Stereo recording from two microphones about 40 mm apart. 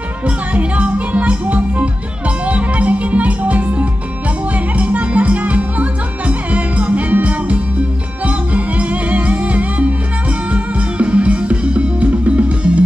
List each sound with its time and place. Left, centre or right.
0.5 s music: right